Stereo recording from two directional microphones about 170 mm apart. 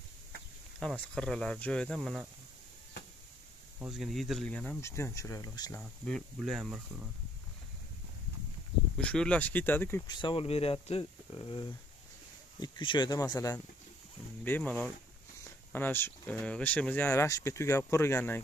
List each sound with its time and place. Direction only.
0.7 s speech: 5° left (ahead or behind)
3.8 s speech: centre (ahead or behind); by 5.8 s 20° left (ahead or behind)
5.8 s speech: 5° left (ahead or behind)
8.9 s speech: 5° left (ahead or behind)
10.0 s speech: 25° left (ahead or behind)
14.4 s speech: 10° left (ahead or behind)